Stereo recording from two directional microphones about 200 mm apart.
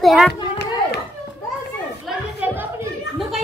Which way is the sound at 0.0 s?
Centre (ahead or behind).